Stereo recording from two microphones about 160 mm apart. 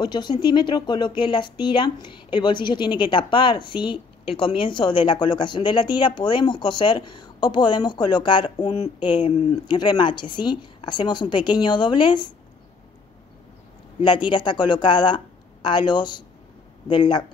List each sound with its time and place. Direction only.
0.0 s speech: 25° left (ahead or behind)
14.0 s speech: 30° left (ahead or behind)